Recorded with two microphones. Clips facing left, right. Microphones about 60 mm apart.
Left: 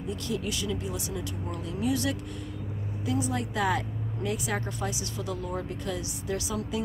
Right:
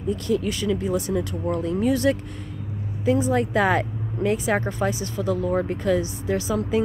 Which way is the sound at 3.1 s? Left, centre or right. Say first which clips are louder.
Right 9 dB; right.